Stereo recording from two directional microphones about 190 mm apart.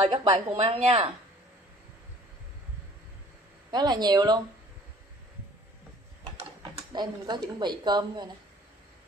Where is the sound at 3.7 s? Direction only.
20° right (ahead or behind).